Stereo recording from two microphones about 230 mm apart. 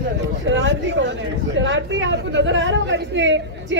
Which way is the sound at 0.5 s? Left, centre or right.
Right.